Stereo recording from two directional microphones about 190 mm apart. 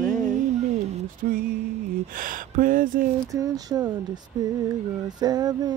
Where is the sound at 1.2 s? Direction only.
50° right (ahead or behind).